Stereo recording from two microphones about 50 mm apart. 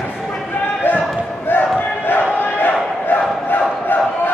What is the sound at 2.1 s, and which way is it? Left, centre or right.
Battle cry, left.